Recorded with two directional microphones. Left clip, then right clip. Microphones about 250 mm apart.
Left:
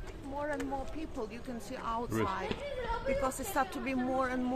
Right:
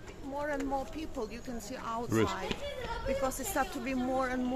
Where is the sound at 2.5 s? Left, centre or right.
Right.